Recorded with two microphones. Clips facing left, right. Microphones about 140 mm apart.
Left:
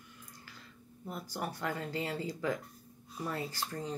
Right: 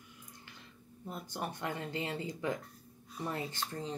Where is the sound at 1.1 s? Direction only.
20° right (ahead or behind).